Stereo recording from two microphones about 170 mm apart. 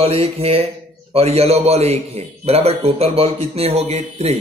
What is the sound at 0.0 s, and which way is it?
Speech, 35° right (ahead or behind).